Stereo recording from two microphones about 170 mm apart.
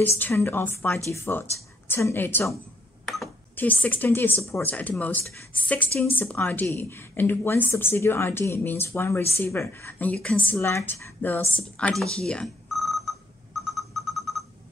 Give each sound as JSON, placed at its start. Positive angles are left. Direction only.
{"t": 0.0, "sound": "a woman's voice", "side_deg": 15}
{"t": 3.5, "sound": "a woman's voice", "side_deg": 10}
{"t": 10.5, "sound": "a sound", "side_deg": 15}